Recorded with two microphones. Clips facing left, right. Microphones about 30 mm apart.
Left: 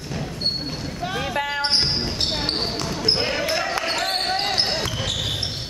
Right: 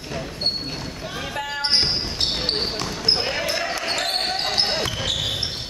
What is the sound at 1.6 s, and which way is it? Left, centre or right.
Basketball bounce, centre.